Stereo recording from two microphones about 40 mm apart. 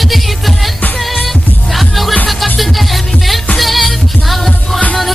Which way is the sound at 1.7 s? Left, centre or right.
Centre.